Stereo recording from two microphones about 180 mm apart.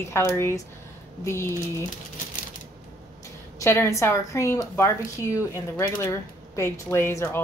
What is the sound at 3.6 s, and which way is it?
A woman's voice, 15° left (ahead or behind).